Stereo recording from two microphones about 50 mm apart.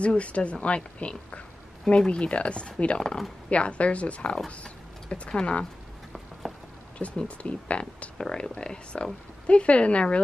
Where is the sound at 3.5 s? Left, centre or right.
Left.